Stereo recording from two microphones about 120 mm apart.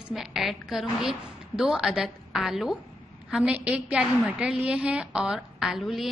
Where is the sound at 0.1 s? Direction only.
5° right (ahead or behind).